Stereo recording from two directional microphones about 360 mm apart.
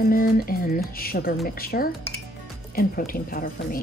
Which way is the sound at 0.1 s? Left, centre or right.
Left.